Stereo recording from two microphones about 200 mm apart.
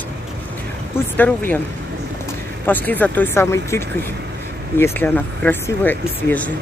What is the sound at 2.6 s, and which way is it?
Speech, 10° left (ahead or behind).